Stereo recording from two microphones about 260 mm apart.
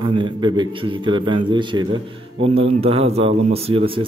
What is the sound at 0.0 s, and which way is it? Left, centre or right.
A man's voice, centre.